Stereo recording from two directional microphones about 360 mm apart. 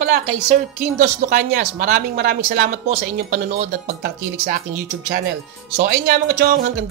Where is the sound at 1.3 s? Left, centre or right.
Right.